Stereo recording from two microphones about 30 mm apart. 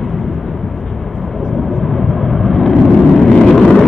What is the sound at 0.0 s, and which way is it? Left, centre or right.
Vehicle, centre.